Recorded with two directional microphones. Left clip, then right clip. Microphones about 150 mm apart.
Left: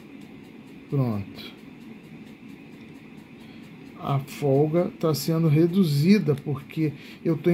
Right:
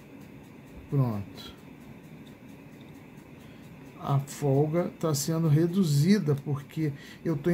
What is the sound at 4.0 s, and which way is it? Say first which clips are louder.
Speech: left 3 dB; 5° left (ahead or behind).